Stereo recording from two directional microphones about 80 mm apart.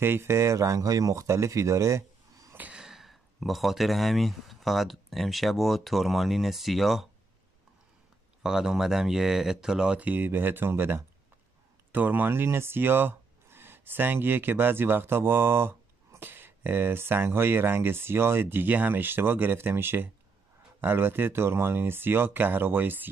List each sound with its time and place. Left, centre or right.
0.0 s speech: right
2.5 s a sound: centre
2.8 s speech: centre
8.4 s speech: centre
10.0 s speech: right